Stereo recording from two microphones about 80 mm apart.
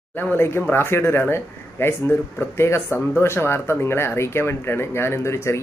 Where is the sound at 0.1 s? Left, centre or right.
Left.